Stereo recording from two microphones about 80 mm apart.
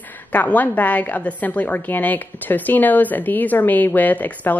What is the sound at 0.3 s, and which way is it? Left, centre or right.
A woman's voice, left.